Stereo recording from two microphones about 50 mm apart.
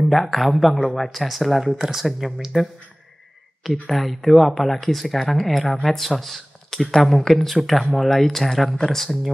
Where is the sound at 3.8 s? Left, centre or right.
Centre.